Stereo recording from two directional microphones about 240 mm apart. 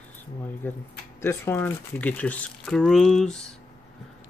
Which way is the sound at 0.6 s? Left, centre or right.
Centre.